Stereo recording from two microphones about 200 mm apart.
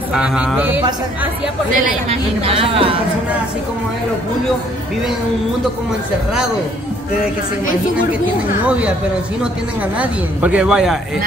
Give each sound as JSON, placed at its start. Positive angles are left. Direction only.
{"t": 0.1, "sound": "speech", "side_deg": -5}
{"t": 2.0, "sound": "a woman's voice", "side_deg": -30}
{"t": 8.6, "sound": "a woman's voice", "side_deg": -5}
{"t": 9.9, "sound": "speech", "side_deg": -5}